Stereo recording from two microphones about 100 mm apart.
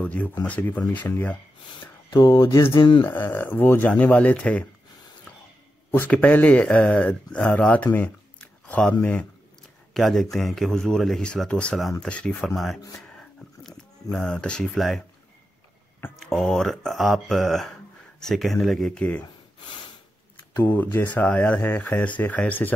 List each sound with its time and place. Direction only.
0.0 s speech: 15° left (ahead or behind)
2.2 s a sound: 30° left (ahead or behind)
2.8 s speech: 55° left (ahead or behind)
3.1 s speech: 20° left (ahead or behind)
5.9 s speech: 15° left (ahead or behind)
9.9 s speech: centre (ahead or behind)
13.0 s a sound: 10° left (ahead or behind)
14.1 s speech: 5° left (ahead or behind)
16.2 s speech: 5° left (ahead or behind)
18.9 s speech: 15° left (ahead or behind)
20.5 s speech: 15° left (ahead or behind)